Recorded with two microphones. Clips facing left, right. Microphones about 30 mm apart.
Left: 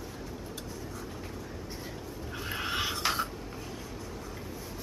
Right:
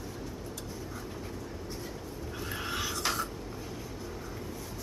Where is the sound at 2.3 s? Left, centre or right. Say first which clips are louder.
Left 3 dB; left.